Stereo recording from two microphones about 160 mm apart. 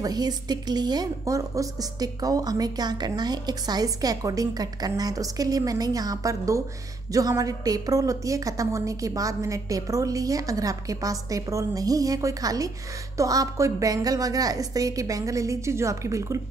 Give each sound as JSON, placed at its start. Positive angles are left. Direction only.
{"t": 0.0, "sound": "a woman's voice", "side_deg": -25}